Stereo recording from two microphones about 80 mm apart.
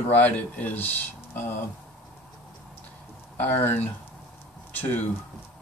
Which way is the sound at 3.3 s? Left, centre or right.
Left.